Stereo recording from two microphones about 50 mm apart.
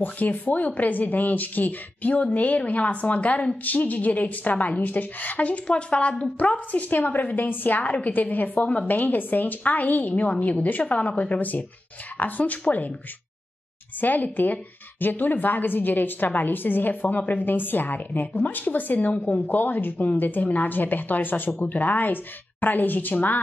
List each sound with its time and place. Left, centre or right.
0.0 s speech: left
14.0 s speech: left
19.5 s speech: left